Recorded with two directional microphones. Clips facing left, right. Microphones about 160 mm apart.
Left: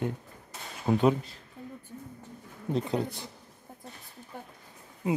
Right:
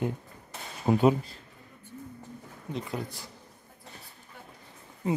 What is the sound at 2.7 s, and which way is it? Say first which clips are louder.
Speech: left 6 dB; 25° left (ahead or behind).